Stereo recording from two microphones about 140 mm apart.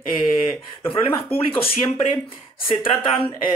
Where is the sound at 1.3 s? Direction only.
45° left (ahead or behind).